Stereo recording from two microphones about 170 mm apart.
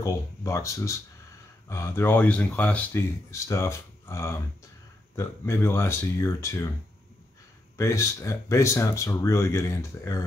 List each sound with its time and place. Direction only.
0.0 s speech: 20° left (ahead or behind)
7.7 s speech: 15° left (ahead or behind)